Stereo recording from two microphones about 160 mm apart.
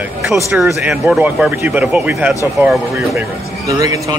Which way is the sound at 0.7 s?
5° right (ahead or behind).